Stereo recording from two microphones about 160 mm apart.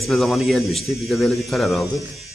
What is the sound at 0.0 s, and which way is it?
Speech, centre (ahead or behind).